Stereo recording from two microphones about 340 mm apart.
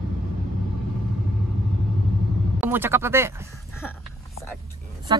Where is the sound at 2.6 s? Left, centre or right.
Centre.